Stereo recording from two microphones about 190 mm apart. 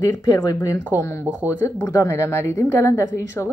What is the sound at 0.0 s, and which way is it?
A woman's voice, 15° left (ahead or behind).